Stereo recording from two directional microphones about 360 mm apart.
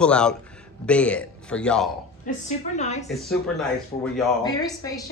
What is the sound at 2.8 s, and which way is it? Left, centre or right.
Speech, centre.